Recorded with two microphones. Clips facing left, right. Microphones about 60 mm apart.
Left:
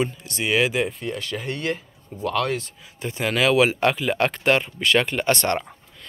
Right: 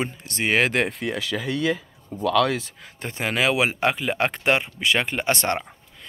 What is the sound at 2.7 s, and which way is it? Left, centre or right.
Speech, right.